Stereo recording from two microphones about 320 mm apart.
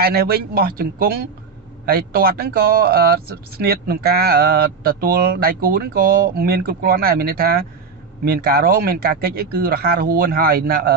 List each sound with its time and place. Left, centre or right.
0.0 s speech: right